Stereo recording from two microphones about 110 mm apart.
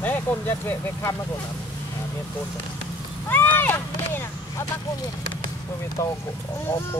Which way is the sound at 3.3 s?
15° left (ahead or behind).